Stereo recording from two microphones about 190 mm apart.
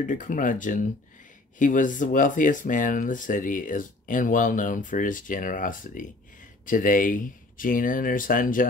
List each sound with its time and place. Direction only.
0.0 s speech: 45° left (ahead or behind)